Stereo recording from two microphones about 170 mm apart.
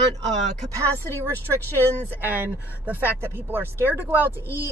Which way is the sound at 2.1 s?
10° right (ahead or behind).